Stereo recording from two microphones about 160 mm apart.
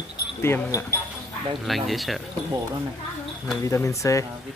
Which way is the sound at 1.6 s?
Centre (ahead or behind).